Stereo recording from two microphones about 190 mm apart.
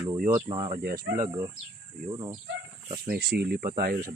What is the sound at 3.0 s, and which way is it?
Speech, 55° right (ahead or behind).